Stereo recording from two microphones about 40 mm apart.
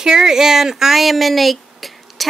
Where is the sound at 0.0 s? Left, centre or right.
Centre.